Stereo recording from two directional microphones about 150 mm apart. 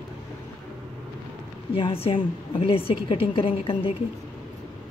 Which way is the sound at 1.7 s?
40° left (ahead or behind).